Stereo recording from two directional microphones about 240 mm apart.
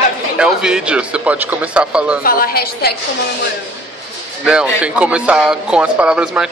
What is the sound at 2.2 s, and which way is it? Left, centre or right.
Speech, left.